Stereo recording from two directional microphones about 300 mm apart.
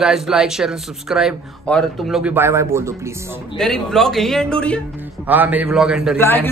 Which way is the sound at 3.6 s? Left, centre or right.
Centre.